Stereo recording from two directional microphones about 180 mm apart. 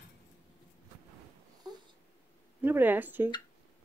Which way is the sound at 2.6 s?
10° right (ahead or behind).